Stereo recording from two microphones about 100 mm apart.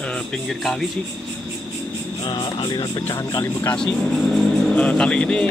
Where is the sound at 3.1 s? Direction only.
35° left (ahead or behind).